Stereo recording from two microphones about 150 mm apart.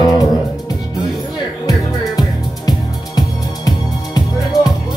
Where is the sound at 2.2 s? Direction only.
25° left (ahead or behind).